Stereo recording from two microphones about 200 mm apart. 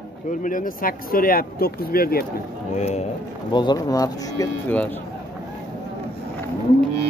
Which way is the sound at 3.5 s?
20° left (ahead or behind).